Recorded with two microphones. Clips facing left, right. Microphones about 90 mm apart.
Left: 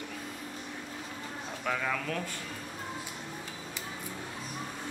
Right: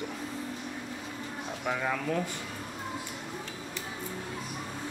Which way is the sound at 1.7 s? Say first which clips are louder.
Right 2 dB; 15° right (ahead or behind).